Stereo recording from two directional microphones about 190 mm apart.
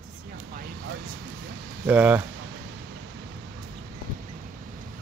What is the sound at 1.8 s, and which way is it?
Speech, 10° right (ahead or behind).